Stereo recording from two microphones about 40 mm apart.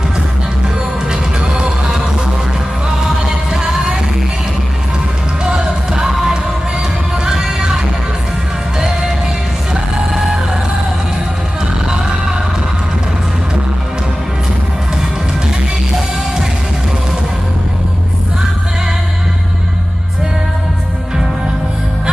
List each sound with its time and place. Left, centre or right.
3.2 s music: centre
5.4 s music: centre
8.7 s music: centre